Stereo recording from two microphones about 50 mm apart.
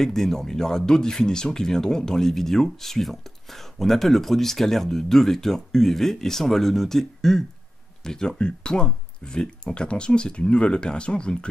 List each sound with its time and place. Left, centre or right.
0.0 s speech: centre